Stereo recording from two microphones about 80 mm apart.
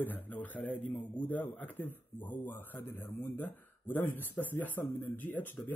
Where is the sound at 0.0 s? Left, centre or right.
Left.